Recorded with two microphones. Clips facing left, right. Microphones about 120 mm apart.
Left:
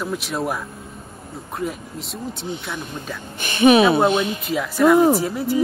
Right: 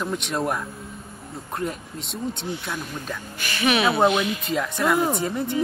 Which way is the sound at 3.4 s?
25° left (ahead or behind).